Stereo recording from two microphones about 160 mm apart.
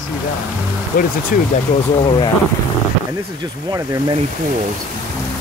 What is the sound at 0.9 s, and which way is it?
Speech, 60° left (ahead or behind).